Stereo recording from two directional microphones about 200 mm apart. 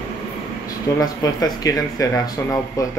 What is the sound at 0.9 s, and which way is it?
Speech, 20° left (ahead or behind).